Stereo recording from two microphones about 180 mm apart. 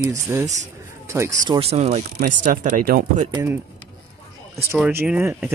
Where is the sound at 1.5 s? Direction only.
35° right (ahead or behind).